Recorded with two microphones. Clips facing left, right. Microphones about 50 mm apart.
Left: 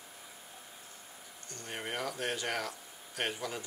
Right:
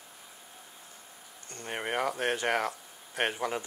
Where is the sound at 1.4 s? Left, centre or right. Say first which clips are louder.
Right 5 dB; right.